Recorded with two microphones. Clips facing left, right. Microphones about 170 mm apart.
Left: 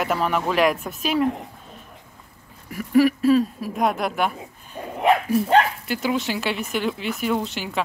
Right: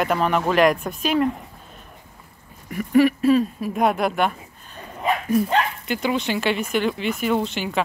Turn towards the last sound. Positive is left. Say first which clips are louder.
# right 2 dB
turn(degrees=0)  # may be behind; listen again after turning